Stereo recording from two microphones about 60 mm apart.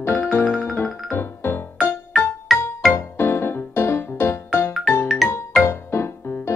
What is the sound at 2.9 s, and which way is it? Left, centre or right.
Music, left.